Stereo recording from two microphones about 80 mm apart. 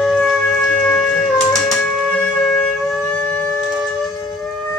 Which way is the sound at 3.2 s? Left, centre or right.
Left.